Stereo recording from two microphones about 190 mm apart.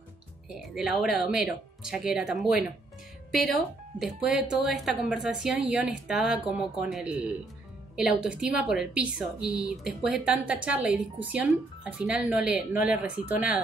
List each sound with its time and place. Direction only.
0.5 s a woman's voice: centre (ahead or behind)